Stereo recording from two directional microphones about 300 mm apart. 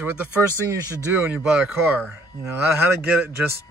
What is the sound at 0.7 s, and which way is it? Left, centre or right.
Speech, centre.